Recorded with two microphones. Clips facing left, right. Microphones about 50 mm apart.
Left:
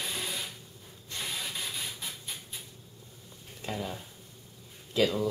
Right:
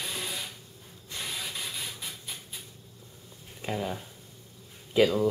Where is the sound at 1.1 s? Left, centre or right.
Centre.